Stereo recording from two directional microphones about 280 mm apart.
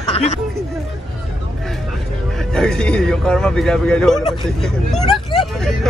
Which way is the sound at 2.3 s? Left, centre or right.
Centre.